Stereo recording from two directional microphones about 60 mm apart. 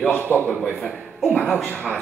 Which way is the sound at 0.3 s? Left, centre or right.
Left.